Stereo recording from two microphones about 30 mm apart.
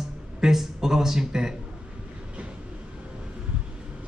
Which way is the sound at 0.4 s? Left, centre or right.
Centre.